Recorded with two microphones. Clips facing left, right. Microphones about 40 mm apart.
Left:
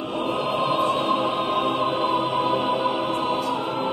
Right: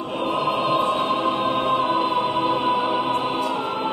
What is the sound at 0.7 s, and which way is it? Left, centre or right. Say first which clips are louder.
Music: right 1 dB; centre.